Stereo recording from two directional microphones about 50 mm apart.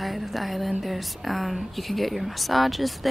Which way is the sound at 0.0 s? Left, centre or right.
Centre.